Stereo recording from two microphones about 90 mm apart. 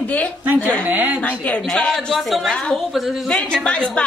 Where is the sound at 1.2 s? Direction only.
15° left (ahead or behind).